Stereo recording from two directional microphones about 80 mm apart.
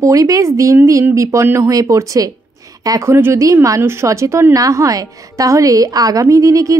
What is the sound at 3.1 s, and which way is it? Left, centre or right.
Speech, right.